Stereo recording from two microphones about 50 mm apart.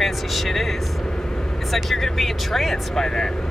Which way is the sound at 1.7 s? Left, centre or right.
Centre.